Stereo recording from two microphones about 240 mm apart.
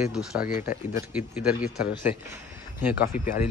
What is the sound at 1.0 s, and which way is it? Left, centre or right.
Speech, left.